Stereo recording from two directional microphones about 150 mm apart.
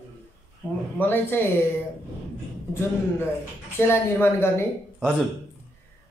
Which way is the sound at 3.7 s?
15° left (ahead or behind).